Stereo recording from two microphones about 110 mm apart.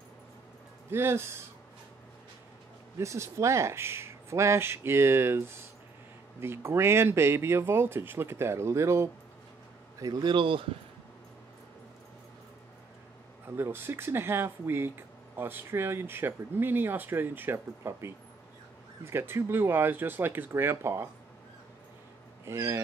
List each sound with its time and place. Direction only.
0.8 s speech: 20° right (ahead or behind)
3.0 s speech: 25° right (ahead or behind)
10.3 s speech: 50° right (ahead or behind)
13.5 s speech: 20° right (ahead or behind)
22.4 s speech: 25° right (ahead or behind)